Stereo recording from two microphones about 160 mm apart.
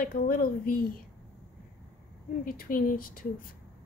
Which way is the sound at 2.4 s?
60° left (ahead or behind).